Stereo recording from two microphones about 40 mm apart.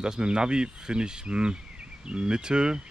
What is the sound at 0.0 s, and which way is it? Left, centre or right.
Speech, right.